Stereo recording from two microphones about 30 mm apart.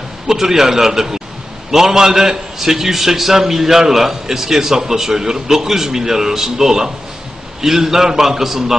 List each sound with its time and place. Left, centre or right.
0.3 s a man's voice: centre